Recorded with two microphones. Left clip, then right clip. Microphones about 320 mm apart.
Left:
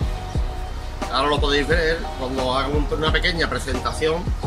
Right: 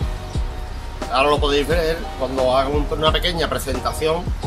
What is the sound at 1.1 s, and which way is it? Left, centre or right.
Speech, centre.